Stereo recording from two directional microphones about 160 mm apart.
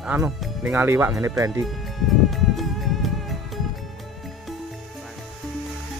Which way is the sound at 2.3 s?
Centre (ahead or behind).